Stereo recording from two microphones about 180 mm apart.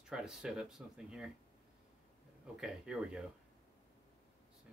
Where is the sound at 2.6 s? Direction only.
5° right (ahead or behind).